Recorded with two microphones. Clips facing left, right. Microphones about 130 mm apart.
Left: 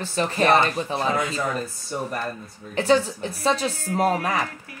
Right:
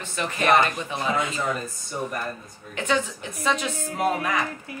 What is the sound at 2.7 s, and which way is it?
A woman's voice, 35° left (ahead or behind).